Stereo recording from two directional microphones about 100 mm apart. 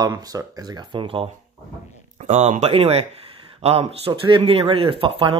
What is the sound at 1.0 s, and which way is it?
Speech, 65° right (ahead or behind).